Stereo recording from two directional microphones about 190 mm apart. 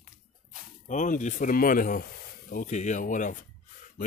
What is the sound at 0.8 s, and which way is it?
Speech, 40° left (ahead or behind).